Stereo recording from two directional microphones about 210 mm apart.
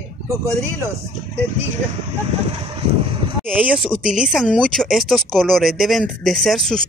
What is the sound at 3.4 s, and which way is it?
Speech, centre (ahead or behind).